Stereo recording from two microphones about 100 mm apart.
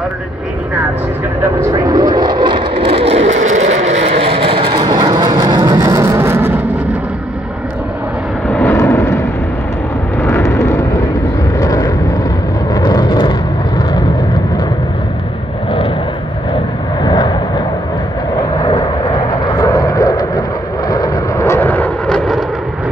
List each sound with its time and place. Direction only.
1.6 s vehicle: 40° right (ahead or behind); by 4.7 s 60° right (ahead or behind)
4.7 s vehicle: 45° right (ahead or behind); by 6.6 s 20° right (ahead or behind)
8.5 s vehicle: 15° left (ahead or behind)
8.7 s vehicle: 30° left (ahead or behind)
10.2 s vehicle: 25° left (ahead or behind); by 13.3 s 50° left (ahead or behind)
17.0 s vehicle: 50° left (ahead or behind)
18.6 s vehicle: 45° left (ahead or behind)
19.6 s a sound: 35° left (ahead or behind)
20.9 s vehicle: 40° left (ahead or behind)
21.5 s vehicle: 20° left (ahead or behind)
22.0 s vehicle: 5° left (ahead or behind)